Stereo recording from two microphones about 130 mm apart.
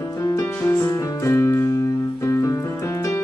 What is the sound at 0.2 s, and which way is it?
Music, 25° left (ahead or behind).